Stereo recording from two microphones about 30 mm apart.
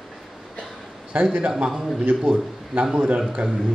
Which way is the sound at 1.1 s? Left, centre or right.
Right.